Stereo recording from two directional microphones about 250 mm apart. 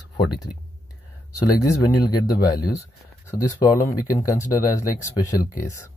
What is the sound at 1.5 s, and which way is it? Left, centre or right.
Speech, centre.